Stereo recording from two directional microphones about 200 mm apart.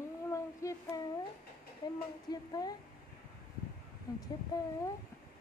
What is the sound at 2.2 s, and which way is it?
Speech, 20° left (ahead or behind).